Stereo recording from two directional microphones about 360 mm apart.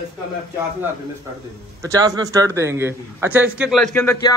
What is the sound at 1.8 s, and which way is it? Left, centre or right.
A man's voice, centre.